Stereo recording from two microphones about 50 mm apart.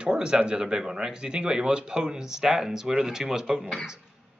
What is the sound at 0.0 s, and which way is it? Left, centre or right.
Speech, centre.